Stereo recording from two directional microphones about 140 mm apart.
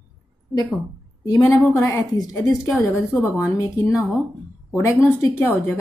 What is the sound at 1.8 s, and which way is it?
A woman's voice, 15° left (ahead or behind).